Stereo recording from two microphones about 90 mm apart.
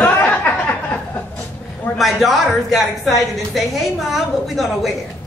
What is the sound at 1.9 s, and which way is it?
Speech, centre (ahead or behind).